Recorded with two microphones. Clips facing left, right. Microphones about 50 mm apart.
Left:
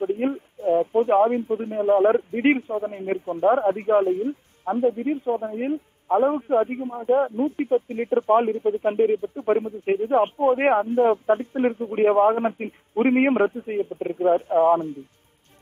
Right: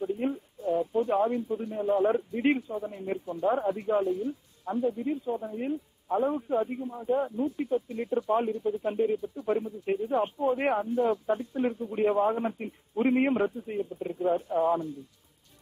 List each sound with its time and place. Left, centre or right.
0.0 s speech: left